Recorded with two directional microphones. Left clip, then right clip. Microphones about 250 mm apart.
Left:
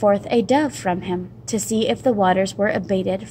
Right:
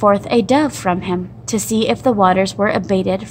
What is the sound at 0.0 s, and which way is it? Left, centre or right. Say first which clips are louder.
A woman's voice: right 4 dB; centre.